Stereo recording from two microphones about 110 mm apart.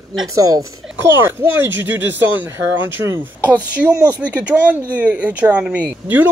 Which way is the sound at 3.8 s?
10° right (ahead or behind).